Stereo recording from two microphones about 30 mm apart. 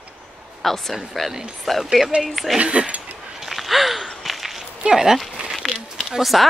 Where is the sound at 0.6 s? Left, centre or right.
Centre.